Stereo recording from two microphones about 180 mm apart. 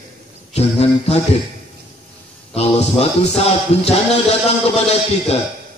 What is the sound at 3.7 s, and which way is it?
Speech, 35° left (ahead or behind).